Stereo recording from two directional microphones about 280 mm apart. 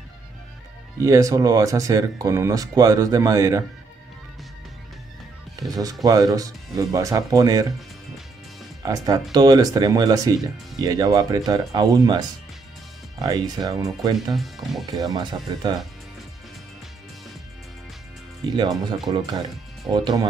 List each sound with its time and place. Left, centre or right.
1.0 s speech: centre
5.6 s speech: centre
8.8 s speech: centre
14.3 s speech: centre
14.9 s speech: centre
19.0 s speech: centre